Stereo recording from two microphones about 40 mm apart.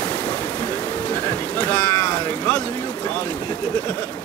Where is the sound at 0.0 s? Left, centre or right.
Left.